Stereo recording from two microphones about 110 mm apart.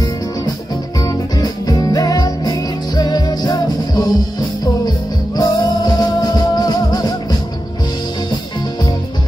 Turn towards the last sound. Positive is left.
turn(degrees=40)  # may be behind; listen again after turning